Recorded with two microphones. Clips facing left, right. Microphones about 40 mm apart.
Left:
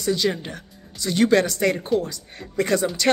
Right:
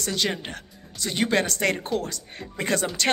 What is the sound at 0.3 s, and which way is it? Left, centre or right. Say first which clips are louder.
Speech: left 3 dB; right.